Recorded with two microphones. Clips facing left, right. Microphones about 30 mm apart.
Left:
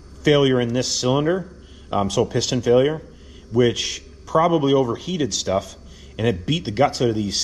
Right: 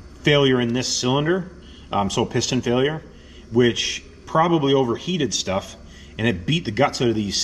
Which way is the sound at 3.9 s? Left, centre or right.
Right.